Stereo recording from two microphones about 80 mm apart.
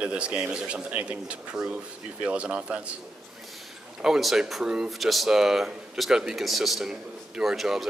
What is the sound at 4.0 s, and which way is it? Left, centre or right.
A man's voice, centre.